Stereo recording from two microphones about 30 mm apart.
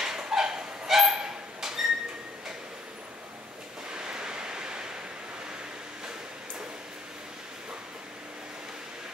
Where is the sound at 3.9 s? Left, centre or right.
Right.